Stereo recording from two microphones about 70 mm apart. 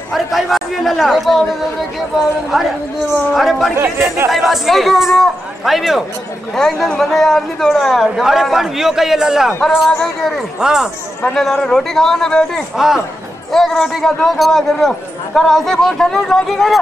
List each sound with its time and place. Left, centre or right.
0.1 s a man's voice: centre
2.5 s a man's voice: centre
3.7 s speech: right
4.3 s a man's voice: centre
6.5 s a man's voice: centre
10.6 s speech: centre
11.3 s a man's voice: centre
12.7 s a man's voice: centre